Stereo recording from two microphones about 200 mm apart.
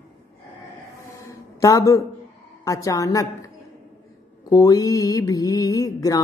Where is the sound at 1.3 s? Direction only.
15° left (ahead or behind).